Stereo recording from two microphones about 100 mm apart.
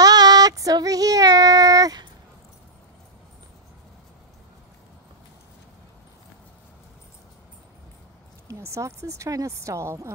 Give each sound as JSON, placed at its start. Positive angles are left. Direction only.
{"t": 0.0, "sound": "child singing", "side_deg": -40}
{"t": 8.5, "sound": "speech", "side_deg": -30}